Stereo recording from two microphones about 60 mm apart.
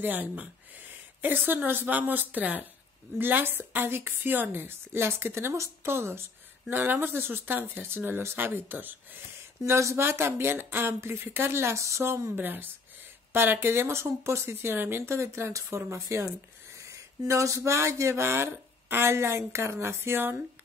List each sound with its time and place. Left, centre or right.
0.0 s a woman's voice: right
6.7 s a woman's voice: right
9.7 s speech: right
12.4 s a woman's voice: right
16.7 s speech: right